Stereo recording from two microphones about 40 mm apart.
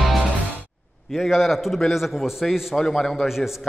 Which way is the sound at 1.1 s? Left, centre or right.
Centre.